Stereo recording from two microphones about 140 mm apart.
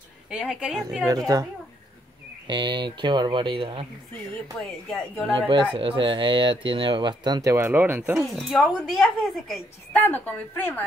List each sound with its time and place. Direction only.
0.3 s a woman's voice: 5° right (ahead or behind)
2.4 s speech: 35° right (ahead or behind)
4.6 s a woman's voice: centre (ahead or behind)
5.5 s speech: 35° right (ahead or behind)
7.5 s speech: 15° right (ahead or behind)
8.4 s a woman's voice: centre (ahead or behind)
9.9 s speech: 15° left (ahead or behind)